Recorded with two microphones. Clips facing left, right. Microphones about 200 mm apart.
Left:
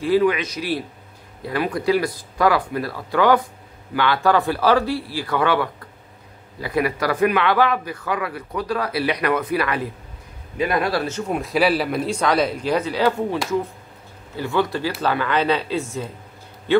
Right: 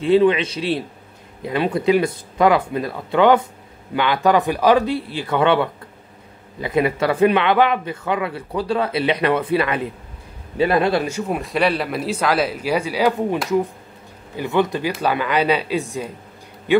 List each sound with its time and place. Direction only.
0.0 s speech: 25° right (ahead or behind)
11.1 s speech: 5° right (ahead or behind)